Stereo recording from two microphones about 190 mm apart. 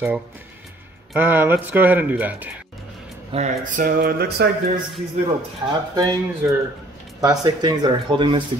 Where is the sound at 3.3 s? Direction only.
35° right (ahead or behind); by 4.5 s 55° right (ahead or behind).